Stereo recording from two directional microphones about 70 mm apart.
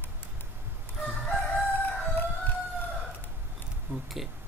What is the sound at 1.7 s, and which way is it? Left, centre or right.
Chicken, left.